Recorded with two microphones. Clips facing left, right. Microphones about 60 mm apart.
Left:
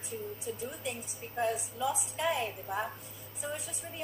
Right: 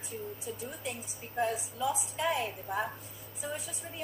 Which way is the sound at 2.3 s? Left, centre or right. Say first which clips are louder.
Even; centre.